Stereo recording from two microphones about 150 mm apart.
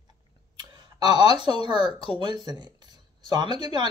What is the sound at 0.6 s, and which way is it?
Speech, 30° right (ahead or behind).